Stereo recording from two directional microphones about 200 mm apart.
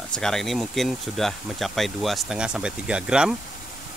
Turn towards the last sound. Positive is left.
turn(degrees=-5)  # may be behind; listen again after turning